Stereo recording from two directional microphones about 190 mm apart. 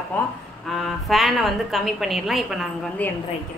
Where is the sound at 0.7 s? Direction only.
Centre (ahead or behind).